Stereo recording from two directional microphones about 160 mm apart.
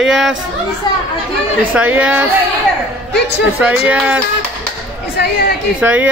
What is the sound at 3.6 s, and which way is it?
Speech, 10° right (ahead or behind).